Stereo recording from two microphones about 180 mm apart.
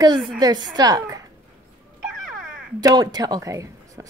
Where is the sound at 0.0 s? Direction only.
25° right (ahead or behind).